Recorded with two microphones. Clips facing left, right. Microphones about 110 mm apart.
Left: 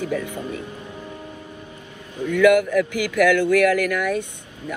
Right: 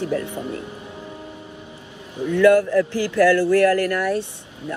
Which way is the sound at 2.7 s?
30° right (ahead or behind).